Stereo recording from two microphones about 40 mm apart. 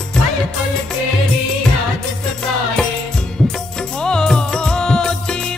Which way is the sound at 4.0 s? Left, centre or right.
Centre.